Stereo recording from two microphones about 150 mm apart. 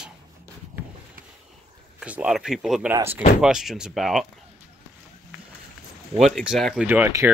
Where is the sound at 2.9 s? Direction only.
15° right (ahead or behind).